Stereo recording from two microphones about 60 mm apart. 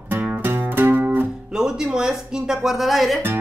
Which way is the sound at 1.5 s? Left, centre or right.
Centre.